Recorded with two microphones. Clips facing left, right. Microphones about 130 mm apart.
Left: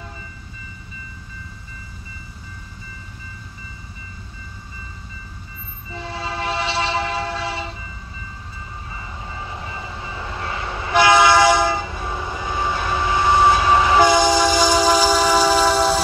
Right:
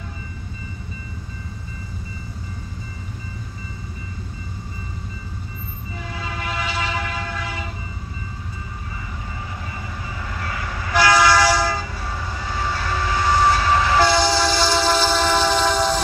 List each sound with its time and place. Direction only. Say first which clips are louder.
5.9 s train: left 4 dB; 30° left (ahead or behind)
9.7 s train: left 1 dB; 25° left (ahead or behind); by 16.0 s 5° left (ahead or behind)